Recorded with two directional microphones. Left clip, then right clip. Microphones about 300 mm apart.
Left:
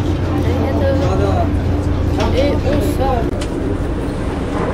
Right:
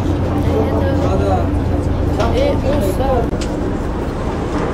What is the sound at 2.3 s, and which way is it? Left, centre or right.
Speech, centre.